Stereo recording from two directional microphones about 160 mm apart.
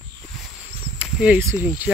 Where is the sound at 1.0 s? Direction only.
10° right (ahead or behind).